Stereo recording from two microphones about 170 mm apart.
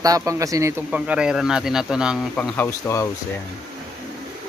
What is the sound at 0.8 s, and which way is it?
Speech, 5° right (ahead or behind).